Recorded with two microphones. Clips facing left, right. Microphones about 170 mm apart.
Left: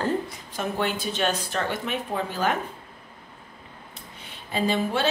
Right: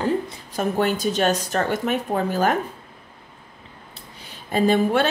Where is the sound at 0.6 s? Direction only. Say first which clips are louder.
Right 6 dB; 45° right (ahead or behind).